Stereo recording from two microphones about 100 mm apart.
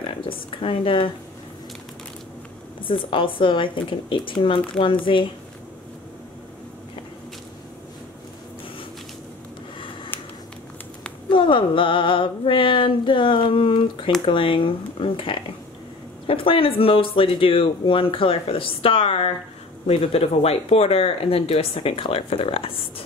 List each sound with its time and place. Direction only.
0.0 s speech: 65° left (ahead or behind)
2.8 s speech: 60° left (ahead or behind)
10.1 s a sound: 20° left (ahead or behind)
11.2 s speech: 55° left (ahead or behind)
19.9 s speech: 85° left; by 22.8 s 65° left (ahead or behind)